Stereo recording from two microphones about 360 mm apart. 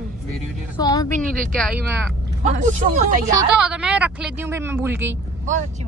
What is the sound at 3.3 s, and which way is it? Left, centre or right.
A woman's voice, centre.